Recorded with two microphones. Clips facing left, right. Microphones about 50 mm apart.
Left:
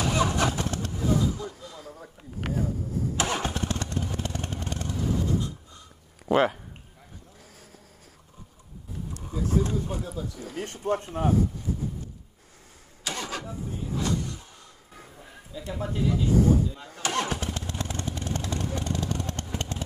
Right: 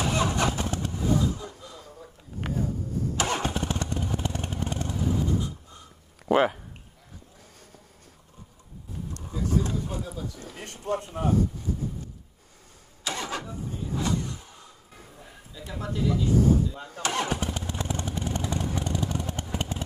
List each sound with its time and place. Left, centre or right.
0.0 s vehicle: centre
1.4 s a sound: centre
3.2 s engine starting: centre
3.5 s motorcycle: centre
4.3 s vehicle: centre
6.2 s a sound: centre
9.1 s a sound: centre
10.3 s speech: centre
10.9 s speech: centre
13.1 s vehicle: centre
13.5 s vehicle: centre
14.0 s vehicle: centre
15.0 s a sound: centre
16.0 s vehicle: centre